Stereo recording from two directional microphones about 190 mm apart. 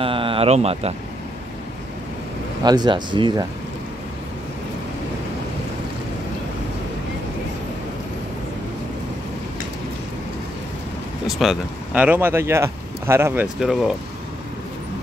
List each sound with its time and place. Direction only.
0.0 s speech: 30° right (ahead or behind)
2.6 s speech: 20° right (ahead or behind)
11.2 s speech: centre (ahead or behind)